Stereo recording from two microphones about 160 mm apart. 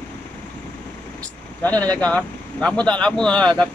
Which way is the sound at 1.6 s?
10° left (ahead or behind).